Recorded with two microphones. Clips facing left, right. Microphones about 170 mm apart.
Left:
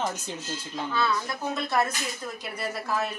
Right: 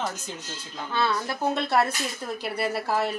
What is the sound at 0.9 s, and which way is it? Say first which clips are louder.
Speech: right 2 dB; 30° right (ahead or behind).